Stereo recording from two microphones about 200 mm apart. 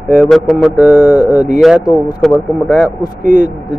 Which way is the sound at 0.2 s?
Centre (ahead or behind).